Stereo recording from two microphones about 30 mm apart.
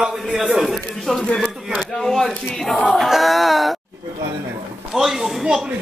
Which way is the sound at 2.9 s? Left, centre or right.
Centre.